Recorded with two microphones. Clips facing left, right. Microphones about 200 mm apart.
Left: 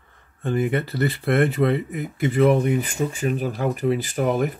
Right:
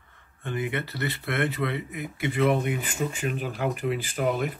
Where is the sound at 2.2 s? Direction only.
40° left (ahead or behind).